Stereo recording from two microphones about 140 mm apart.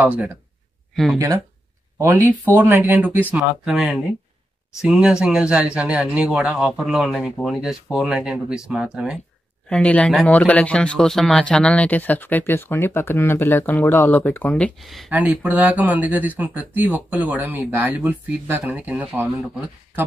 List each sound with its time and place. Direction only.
0.0 s speech: 10° right (ahead or behind)
1.1 s speech: 20° right (ahead or behind); by 9.2 s 5° right (ahead or behind)
9.7 s speech: 10° left (ahead or behind)
15.0 s speech: 10° right (ahead or behind)